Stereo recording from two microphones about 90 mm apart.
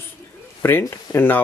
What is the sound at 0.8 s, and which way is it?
Speech, 40° left (ahead or behind).